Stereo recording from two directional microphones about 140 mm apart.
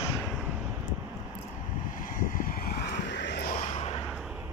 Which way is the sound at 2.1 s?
80° left.